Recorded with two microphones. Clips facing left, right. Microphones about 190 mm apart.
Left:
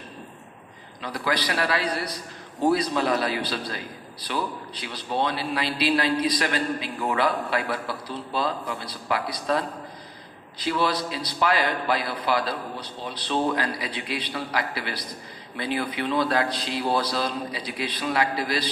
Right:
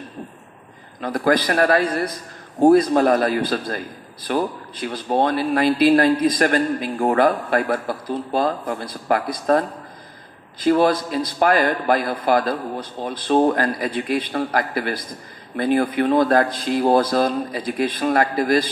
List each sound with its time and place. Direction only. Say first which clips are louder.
1.0 s a man's voice: right 9 dB; 50° right (ahead or behind)